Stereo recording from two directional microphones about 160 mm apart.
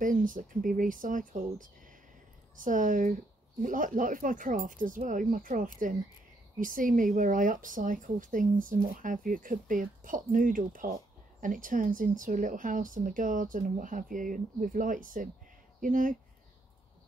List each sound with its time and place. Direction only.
0.0 s speech: 55° right (ahead or behind)